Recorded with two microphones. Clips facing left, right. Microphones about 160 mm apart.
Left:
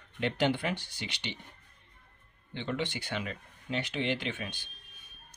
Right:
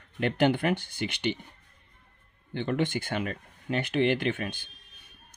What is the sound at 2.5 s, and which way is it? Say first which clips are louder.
Speech: right 6 dB; 50° right (ahead or behind).